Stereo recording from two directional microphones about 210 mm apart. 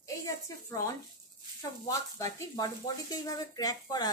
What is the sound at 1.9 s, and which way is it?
Speech, 15° left (ahead or behind).